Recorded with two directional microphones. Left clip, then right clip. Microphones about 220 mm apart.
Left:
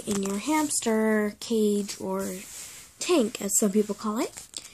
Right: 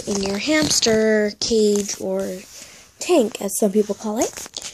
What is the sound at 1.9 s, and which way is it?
A woman's voice, centre (ahead or behind).